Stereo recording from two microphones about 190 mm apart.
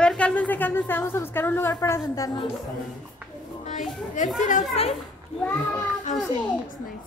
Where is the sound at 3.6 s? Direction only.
40° left (ahead or behind).